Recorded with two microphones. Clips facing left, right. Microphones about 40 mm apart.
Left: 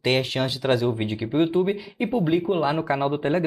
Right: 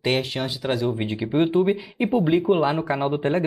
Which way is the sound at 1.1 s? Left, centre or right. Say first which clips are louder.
Right 3 dB; centre.